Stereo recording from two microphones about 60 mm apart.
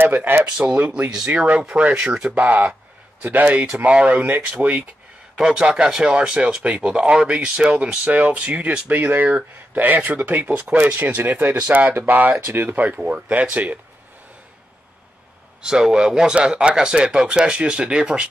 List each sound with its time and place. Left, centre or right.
0.0 s speech: right; by 2.3 s centre
2.3 s speech: right
15.6 s speech: centre